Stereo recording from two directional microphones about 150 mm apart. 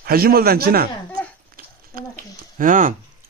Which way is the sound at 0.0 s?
85° right.